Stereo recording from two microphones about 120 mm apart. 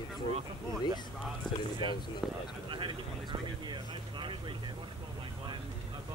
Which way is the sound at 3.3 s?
45° right (ahead or behind).